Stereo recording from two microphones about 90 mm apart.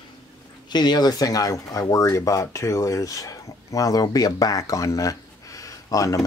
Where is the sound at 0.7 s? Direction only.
50° left (ahead or behind).